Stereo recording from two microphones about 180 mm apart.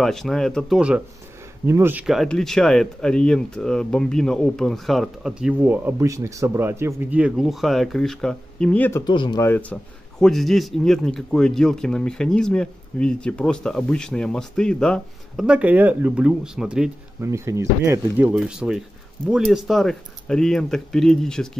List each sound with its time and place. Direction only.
0.0 s a man's voice: centre (ahead or behind)
9.0 s speech: 25° left (ahead or behind)
9.4 s a man's voice: 10° left (ahead or behind)
17.2 s a man's voice: 15° right (ahead or behind); by 21.5 s 5° left (ahead or behind)